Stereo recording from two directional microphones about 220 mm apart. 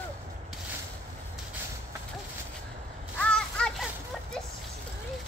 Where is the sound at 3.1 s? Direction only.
5° left (ahead or behind).